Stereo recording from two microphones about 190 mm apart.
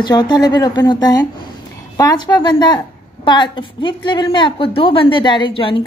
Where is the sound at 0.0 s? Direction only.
25° left (ahead or behind).